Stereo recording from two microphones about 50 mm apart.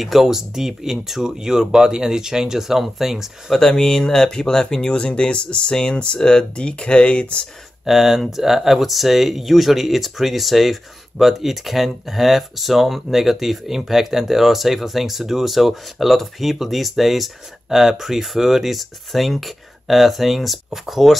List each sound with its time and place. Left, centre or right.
0.0 s speech: centre
3.5 s speech: centre
7.8 s speech: centre